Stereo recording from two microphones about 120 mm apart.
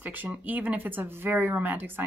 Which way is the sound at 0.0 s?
15° right (ahead or behind).